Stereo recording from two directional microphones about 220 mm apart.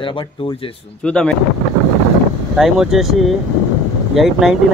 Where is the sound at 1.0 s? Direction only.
5° left (ahead or behind).